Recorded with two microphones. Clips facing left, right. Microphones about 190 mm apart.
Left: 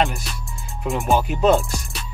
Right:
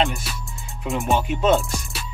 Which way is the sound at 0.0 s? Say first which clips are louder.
Left 1 dB; centre (ahead or behind).